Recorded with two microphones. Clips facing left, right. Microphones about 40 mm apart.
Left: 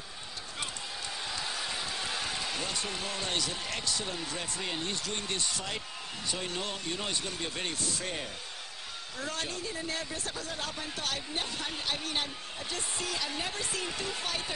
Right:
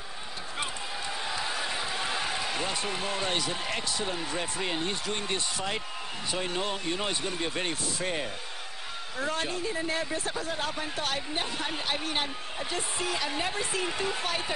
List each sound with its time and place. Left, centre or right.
1.2 s speech: centre